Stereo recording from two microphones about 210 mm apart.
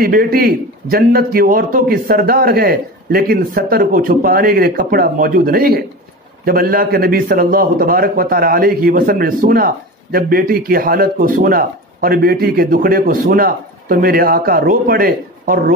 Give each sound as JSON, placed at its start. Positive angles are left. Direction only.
{"t": 0.0, "sound": "a man's voice", "side_deg": -45}